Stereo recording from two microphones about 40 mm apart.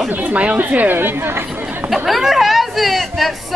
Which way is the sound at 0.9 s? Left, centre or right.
Right.